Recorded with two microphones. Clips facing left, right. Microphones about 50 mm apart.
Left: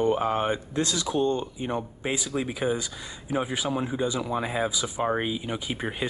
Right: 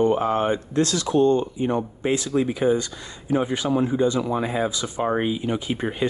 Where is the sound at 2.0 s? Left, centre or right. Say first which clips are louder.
Right 8 dB; centre.